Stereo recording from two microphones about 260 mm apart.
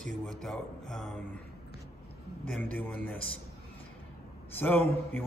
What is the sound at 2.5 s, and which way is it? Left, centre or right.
Speech, centre.